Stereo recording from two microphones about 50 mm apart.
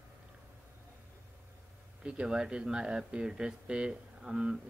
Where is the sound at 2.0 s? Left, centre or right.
Centre.